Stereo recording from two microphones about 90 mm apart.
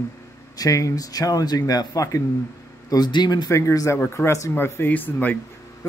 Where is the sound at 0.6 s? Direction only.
40° left (ahead or behind).